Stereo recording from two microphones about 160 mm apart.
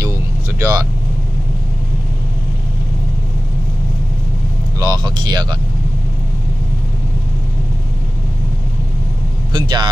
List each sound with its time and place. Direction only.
0.6 s speech: 20° right (ahead or behind)
4.7 s speech: 25° right (ahead or behind)
9.5 s speech: 25° right (ahead or behind)